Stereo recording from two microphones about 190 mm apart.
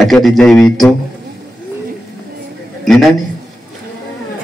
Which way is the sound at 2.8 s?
Centre (ahead or behind).